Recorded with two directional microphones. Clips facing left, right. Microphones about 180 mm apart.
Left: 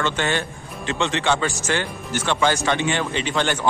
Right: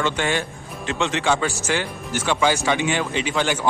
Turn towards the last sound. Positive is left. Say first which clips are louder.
# even
turn(degrees=-10)  # may be behind; listen again after turning